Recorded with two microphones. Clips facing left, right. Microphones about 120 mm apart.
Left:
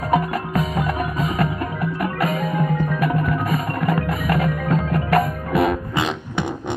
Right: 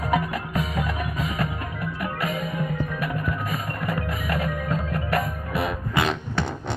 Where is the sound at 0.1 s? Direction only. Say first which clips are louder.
Left 6 dB; 45° left (ahead or behind).